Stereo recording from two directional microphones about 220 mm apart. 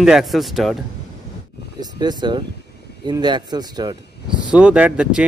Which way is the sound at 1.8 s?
20° right (ahead or behind).